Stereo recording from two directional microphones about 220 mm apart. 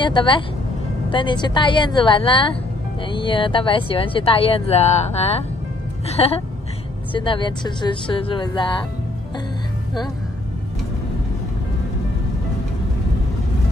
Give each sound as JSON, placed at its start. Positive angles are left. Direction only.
{"t": 0.0, "sound": "speech", "side_deg": 20}